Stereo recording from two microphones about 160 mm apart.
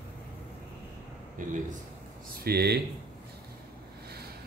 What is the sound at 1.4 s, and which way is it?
Speech, 55° right (ahead or behind).